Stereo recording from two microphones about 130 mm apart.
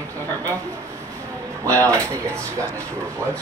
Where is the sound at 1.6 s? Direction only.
25° right (ahead or behind).